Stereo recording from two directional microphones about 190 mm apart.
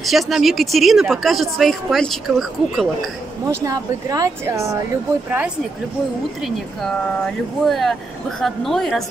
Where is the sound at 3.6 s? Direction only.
20° right (ahead or behind).